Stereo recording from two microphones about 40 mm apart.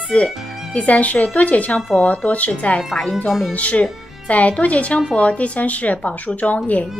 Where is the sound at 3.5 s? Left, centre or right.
Left.